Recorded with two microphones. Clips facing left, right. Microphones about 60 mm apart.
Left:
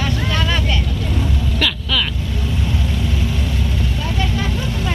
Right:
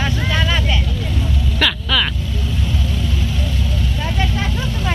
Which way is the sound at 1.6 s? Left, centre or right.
Right.